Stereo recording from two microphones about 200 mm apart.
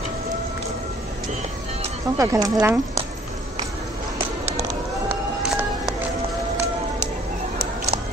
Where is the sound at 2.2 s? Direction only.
15° right (ahead or behind).